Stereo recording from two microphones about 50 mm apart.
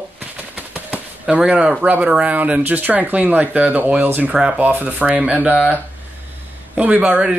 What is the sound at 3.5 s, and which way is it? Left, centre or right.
Speech, right.